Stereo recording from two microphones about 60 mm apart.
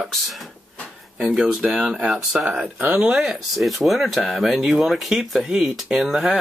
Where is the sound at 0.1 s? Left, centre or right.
Centre.